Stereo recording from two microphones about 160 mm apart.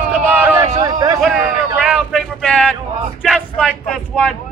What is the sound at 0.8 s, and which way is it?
Speech, 25° right (ahead or behind).